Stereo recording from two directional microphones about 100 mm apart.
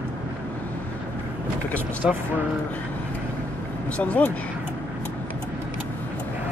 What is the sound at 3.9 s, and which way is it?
Speech, 15° left (ahead or behind).